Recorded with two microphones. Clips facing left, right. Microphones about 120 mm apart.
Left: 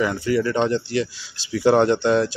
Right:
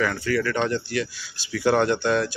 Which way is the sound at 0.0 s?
20° left (ahead or behind).